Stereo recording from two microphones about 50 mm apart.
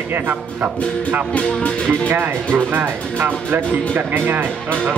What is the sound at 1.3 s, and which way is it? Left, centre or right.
Speech, left.